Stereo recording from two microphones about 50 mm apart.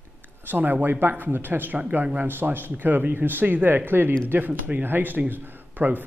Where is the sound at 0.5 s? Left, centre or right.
Right.